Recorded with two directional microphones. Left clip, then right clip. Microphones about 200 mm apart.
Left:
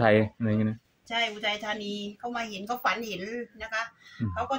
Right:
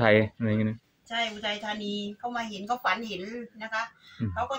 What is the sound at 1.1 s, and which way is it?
Speech, 25° left (ahead or behind).